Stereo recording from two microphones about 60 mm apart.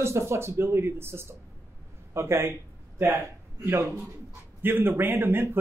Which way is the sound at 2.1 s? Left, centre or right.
Right.